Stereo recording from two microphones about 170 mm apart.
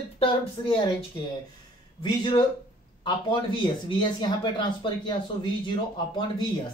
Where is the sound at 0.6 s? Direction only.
25° left (ahead or behind).